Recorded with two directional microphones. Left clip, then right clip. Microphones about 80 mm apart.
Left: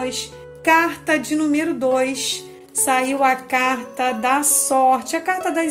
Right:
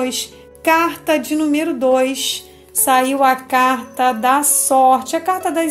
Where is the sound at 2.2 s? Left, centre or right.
Left.